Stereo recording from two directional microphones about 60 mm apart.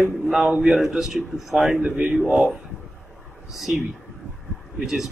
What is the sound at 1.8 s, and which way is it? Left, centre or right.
Speech, right.